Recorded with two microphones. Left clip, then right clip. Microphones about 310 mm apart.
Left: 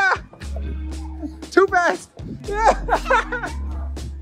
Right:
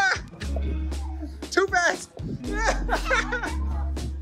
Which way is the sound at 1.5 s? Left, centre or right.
Centre.